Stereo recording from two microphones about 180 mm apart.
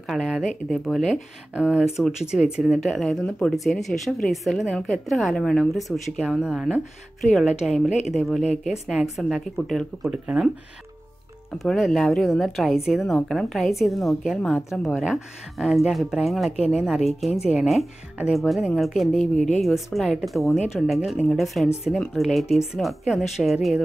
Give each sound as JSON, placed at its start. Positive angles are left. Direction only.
{"t": 0.1, "sound": "a woman's voice", "side_deg": 0}
{"t": 8.4, "sound": "a woman's voice", "side_deg": 40}
{"t": 8.8, "sound": "a woman's voice", "side_deg": -5}
{"t": 11.5, "sound": "a woman's voice", "side_deg": 0}